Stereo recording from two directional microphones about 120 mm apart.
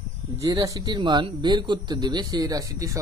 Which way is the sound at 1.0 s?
40° right (ahead or behind).